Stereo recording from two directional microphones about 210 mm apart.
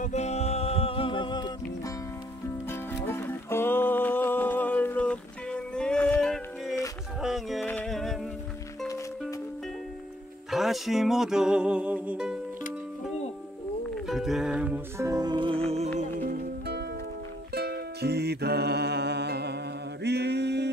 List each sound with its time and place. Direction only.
0.0 s music: 30° left (ahead or behind)
2.7 s music: 10° left (ahead or behind)
10.5 s music: centre (ahead or behind)
14.0 s music: centre (ahead or behind); by 15.9 s 30° right (ahead or behind)
16.0 s music: 45° right (ahead or behind)